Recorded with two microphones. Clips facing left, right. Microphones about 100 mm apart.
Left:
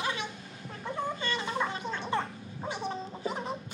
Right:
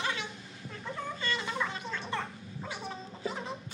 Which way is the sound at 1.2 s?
25° left (ahead or behind).